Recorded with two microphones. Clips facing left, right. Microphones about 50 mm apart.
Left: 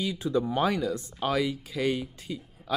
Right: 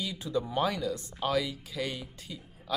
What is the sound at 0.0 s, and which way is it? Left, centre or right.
Speech, left.